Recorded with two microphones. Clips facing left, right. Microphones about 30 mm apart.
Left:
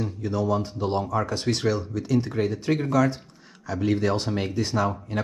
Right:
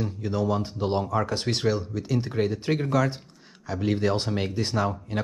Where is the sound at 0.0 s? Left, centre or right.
Centre.